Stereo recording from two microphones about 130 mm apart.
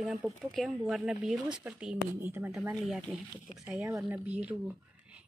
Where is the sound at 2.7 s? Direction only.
Centre (ahead or behind).